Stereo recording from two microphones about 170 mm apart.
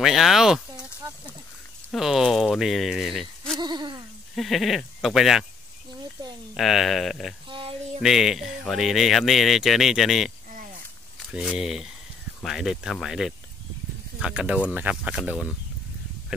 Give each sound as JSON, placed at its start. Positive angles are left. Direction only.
{"t": 0.0, "sound": "speech", "side_deg": 0}
{"t": 1.9, "sound": "speech", "side_deg": 0}
{"t": 3.5, "sound": "hoot", "side_deg": -25}
{"t": 4.4, "sound": "speech", "side_deg": 0}
{"t": 6.5, "sound": "speech", "side_deg": 0}
{"t": 7.4, "sound": "a sound", "side_deg": -30}
{"t": 8.0, "sound": "speech", "side_deg": 0}
{"t": 11.4, "sound": "speech", "side_deg": 0}